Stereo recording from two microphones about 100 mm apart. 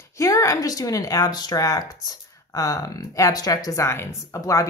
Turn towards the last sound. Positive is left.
turn(degrees=35)  # may be behind; listen again after turning